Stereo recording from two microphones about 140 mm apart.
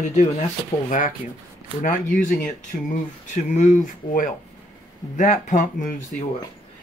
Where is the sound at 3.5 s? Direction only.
65° left (ahead or behind).